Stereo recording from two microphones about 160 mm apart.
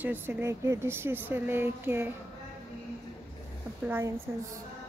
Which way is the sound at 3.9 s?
15° right (ahead or behind).